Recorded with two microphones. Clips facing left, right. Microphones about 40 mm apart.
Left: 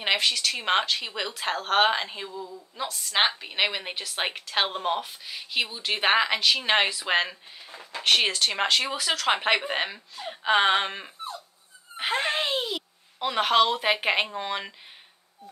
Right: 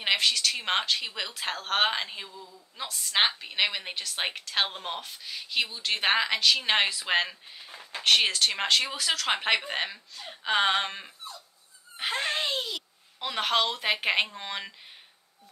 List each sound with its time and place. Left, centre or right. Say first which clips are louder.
0.0 s speech: left 1 dB; centre
2.3 s a woman's voice: left 9 dB; centre
2.8 s a woman's voice: left 2 dB; centre